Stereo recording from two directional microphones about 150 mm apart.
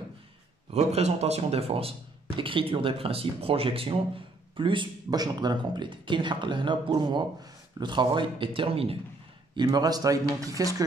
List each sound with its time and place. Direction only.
0.7 s speech: 45° right (ahead or behind)
9.6 s a man's voice: 30° right (ahead or behind)